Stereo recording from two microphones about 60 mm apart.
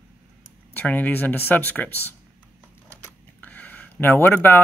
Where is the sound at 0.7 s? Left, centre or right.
Left.